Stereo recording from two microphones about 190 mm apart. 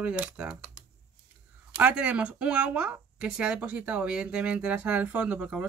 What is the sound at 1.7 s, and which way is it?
Speech, 5° right (ahead or behind).